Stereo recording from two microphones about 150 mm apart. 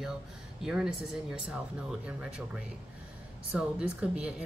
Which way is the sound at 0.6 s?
5° right (ahead or behind).